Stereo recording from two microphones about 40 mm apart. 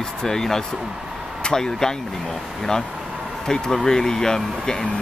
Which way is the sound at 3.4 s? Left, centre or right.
Centre.